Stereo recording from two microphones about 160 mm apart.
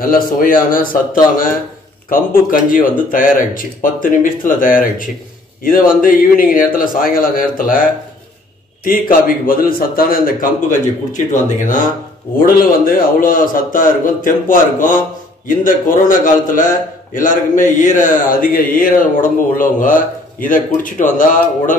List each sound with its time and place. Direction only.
0.0 s a man's voice: 60° left (ahead or behind)
12.4 s a man's voice: 60° left (ahead or behind)